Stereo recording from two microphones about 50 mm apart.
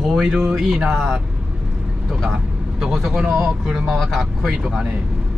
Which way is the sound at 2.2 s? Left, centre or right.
Centre.